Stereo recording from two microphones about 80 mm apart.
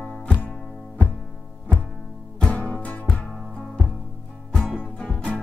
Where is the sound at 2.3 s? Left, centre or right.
Centre.